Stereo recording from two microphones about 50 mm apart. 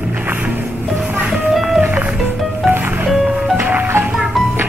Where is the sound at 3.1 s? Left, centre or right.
Centre.